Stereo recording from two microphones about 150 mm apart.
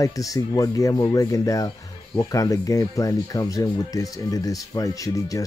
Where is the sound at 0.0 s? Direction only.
25° left (ahead or behind).